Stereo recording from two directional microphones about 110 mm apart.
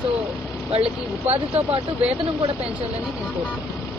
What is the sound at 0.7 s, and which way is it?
Speech, 70° right (ahead or behind).